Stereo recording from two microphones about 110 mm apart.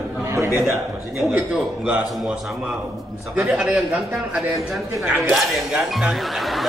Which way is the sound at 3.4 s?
5° right (ahead or behind).